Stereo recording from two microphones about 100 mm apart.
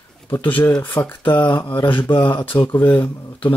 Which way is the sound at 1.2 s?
55° left (ahead or behind).